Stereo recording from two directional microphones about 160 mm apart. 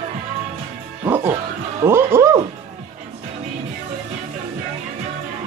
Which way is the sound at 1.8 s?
15° right (ahead or behind).